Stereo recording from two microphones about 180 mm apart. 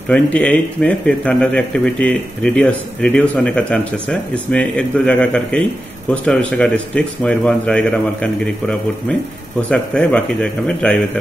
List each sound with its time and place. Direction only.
0.1 s a man's voice: 10° left (ahead or behind)